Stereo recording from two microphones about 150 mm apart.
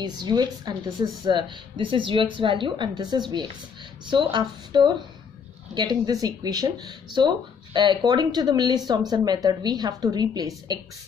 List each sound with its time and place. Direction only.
0.0 s speech: 30° right (ahead or behind)